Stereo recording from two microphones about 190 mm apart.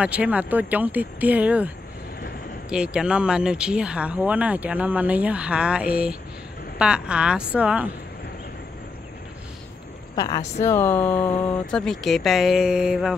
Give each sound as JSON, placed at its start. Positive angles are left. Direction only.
{"t": 0.0, "sound": "speech", "side_deg": -5}
{"t": 2.7, "sound": "speech", "side_deg": -5}
{"t": 10.1, "sound": "speech", "side_deg": 20}